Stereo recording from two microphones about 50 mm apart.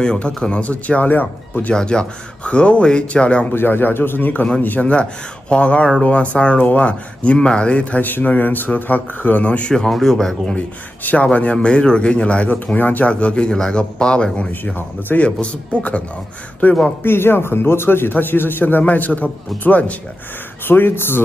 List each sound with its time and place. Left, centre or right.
0.0 s speech: centre; by 1.7 s left
1.7 s speech: centre
3.5 s a man's voice: left
9.8 s speech: centre
11.0 s speech: left
11.5 s speech: centre
12.7 s speech: left
13.1 s speech: left
15.1 s speech: left
17.0 s a man's voice: left
20.6 s a man's voice: left